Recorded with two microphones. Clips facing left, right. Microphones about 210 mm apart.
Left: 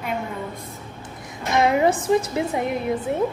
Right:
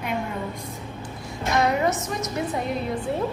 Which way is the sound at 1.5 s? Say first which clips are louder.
Left 3 dB; 20° left (ahead or behind).